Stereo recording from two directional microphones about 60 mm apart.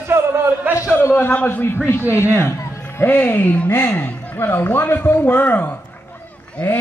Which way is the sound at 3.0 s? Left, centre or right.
Left.